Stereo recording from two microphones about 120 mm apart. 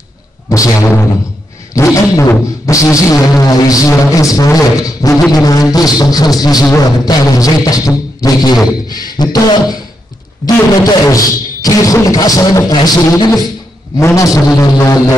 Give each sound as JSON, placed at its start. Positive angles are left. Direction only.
{"t": 0.5, "sound": "music", "side_deg": 25}
{"t": 5.3, "sound": "a man's voice", "side_deg": 30}
{"t": 13.9, "sound": "music", "side_deg": 25}